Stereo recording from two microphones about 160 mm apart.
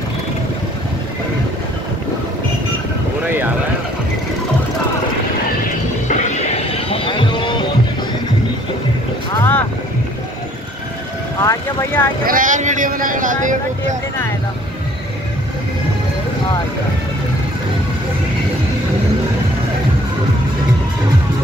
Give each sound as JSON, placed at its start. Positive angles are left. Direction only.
{"t": 6.0, "sound": "music", "side_deg": 50}
{"t": 6.9, "sound": "a sound", "side_deg": 30}
{"t": 9.3, "sound": "vehicle", "side_deg": 15}
{"t": 11.4, "sound": "speech", "side_deg": 15}
{"t": 12.3, "sound": "speech", "side_deg": -55}